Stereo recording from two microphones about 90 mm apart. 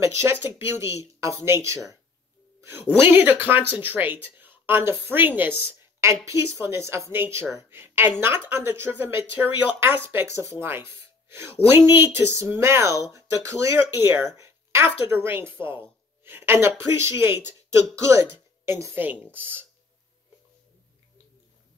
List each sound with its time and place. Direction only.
0.0 s speech: 30° right (ahead or behind)